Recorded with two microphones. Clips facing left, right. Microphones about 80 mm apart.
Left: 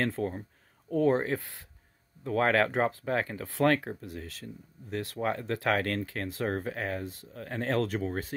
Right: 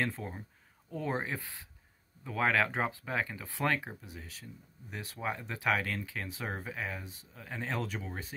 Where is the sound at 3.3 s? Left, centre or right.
Left.